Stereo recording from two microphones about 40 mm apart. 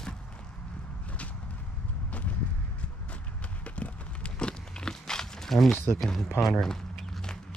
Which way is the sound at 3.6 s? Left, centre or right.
Left.